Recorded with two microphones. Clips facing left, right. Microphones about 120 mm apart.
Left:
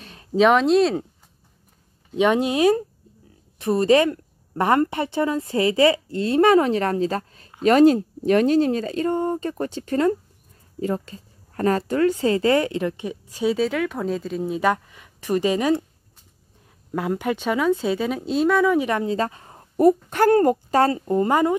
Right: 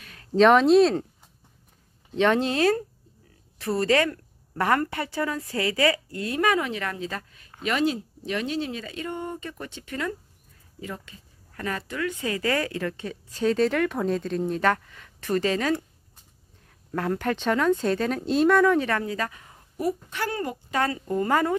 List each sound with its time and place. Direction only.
0.0 s a sound: 25° left (ahead or behind)
0.3 s speech: 5° left (ahead or behind)
2.1 s a woman's voice: 10° left (ahead or behind)
16.9 s speech: 10° left (ahead or behind)
18.8 s a woman's voice: 20° left (ahead or behind); by 21.0 s 35° left (ahead or behind)
21.0 s a woman's voice: 20° left (ahead or behind)